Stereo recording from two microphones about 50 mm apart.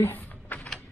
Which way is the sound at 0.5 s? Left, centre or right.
Left.